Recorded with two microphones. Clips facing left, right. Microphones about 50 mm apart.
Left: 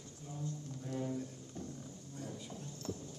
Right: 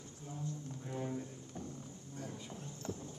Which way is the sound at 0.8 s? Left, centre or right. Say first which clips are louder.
Left 2 dB; centre.